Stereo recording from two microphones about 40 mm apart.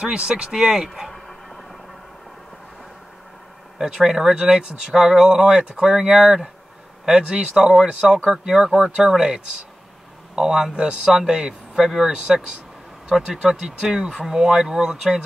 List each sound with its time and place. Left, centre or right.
0.0 s speech: right
1.1 s a sound: centre
3.7 s speech: centre